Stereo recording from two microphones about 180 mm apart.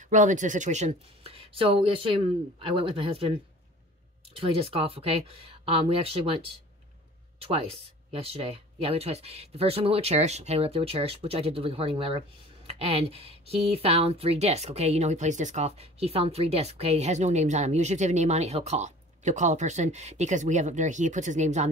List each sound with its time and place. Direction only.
0.0 s speech: 45° right (ahead or behind)